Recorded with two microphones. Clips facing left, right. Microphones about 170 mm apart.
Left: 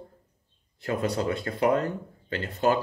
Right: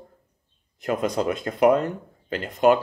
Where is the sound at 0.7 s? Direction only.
20° right (ahead or behind).